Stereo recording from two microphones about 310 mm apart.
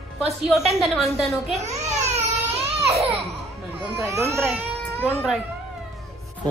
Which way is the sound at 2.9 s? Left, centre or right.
Centre.